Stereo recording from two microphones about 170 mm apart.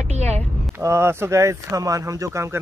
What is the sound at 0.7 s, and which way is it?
Speech, 15° right (ahead or behind).